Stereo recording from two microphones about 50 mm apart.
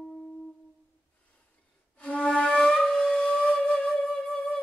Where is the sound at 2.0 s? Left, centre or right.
Left; by 4.6 s centre.